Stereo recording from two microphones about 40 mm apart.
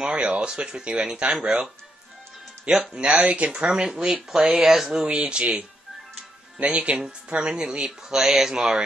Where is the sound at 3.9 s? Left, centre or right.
Centre.